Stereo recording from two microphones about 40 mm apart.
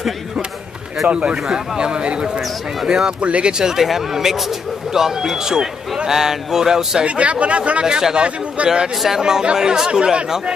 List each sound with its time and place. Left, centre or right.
1.3 s speech: right
2.8 s speech: centre
3.1 s speech: right
3.5 s speech: centre
7.1 s speech: right
7.8 s speech: centre
8.6 s speech: right
9.2 s speech: right